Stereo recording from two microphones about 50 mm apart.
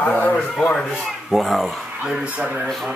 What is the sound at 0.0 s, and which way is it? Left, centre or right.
Speech, left.